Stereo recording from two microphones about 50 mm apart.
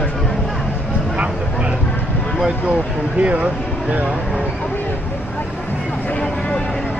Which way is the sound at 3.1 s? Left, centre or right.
Right.